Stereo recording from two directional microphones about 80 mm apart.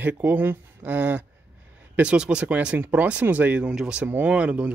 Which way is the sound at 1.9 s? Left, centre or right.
Centre.